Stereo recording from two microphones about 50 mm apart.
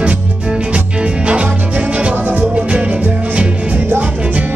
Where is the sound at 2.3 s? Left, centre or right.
Right.